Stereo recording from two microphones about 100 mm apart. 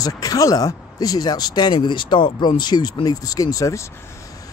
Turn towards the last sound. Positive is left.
turn(degrees=35)  # may be behind; listen again after turning